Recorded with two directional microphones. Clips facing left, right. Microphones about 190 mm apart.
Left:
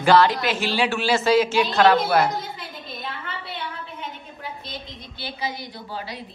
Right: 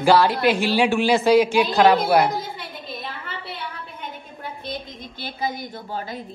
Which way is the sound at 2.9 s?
Centre (ahead or behind).